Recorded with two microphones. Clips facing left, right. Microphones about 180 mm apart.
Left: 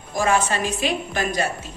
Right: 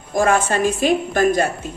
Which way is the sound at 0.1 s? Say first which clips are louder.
Right 4 dB; 55° right (ahead or behind).